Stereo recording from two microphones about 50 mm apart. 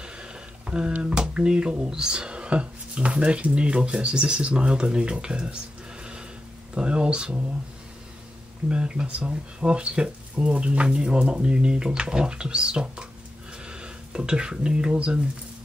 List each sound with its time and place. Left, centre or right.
0.0 s a sound: centre
1.1 s speech: centre
6.7 s speech: centre
8.6 s speech: centre